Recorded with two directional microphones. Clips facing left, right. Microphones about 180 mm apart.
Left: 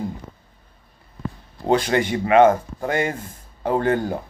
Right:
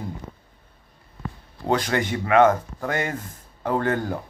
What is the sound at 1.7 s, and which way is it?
Speech, 20° left (ahead or behind).